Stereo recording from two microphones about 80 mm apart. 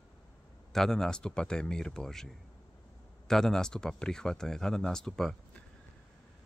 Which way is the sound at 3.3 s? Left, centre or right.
Centre.